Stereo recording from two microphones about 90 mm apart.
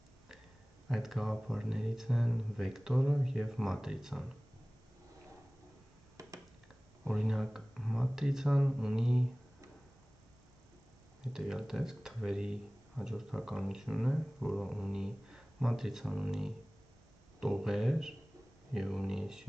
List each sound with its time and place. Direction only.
0.8 s speech: 5° right (ahead or behind)
6.2 s a sound: 40° right (ahead or behind)
7.1 s speech: 5° right (ahead or behind)
11.3 s speech: 5° right (ahead or behind)